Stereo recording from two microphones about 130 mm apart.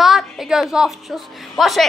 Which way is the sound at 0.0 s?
Centre (ahead or behind).